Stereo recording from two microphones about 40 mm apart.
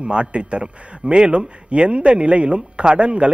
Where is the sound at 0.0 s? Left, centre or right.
Right.